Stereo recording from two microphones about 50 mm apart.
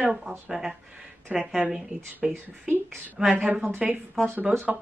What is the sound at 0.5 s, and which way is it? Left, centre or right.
Speech, centre.